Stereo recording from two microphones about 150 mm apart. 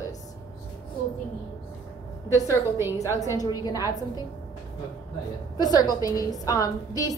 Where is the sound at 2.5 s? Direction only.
15° right (ahead or behind).